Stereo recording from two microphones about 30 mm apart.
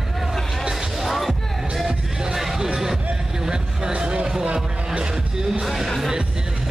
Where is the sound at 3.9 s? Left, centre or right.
Right.